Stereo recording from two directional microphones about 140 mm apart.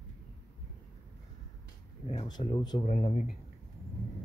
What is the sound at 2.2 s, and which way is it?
Speech, 35° left (ahead or behind).